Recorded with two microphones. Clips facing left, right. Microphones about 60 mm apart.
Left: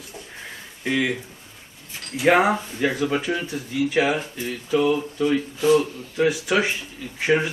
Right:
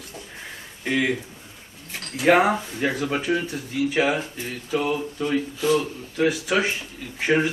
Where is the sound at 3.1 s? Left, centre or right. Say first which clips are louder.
Even; centre.